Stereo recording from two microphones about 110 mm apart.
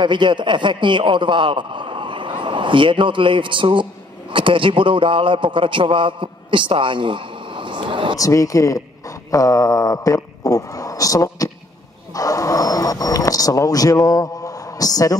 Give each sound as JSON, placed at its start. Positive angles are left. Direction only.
{"t": 0.0, "sound": "a man's voice", "side_deg": -45}
{"t": 8.2, "sound": "speech", "side_deg": 30}
{"t": 12.2, "sound": "vehicle", "side_deg": 30}